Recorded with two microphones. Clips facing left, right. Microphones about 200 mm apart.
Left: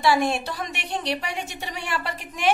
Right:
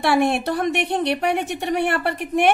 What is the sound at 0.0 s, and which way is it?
A woman's voice, 60° right (ahead or behind).